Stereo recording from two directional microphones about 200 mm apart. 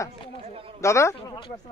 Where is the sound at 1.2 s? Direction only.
25° left (ahead or behind).